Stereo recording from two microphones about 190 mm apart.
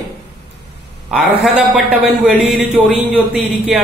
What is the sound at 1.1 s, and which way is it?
Speech, 5° right (ahead or behind).